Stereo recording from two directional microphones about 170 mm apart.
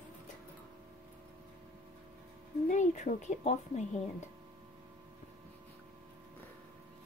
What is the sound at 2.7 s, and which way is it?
A woman's voice, 45° left (ahead or behind).